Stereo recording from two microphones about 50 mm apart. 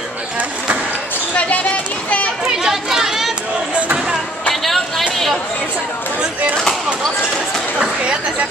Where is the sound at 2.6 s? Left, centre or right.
Centre.